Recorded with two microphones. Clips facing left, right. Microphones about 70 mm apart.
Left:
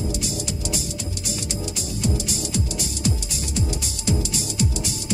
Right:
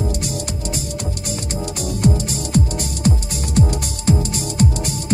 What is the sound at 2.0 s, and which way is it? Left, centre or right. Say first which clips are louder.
Music: right 6 dB; right.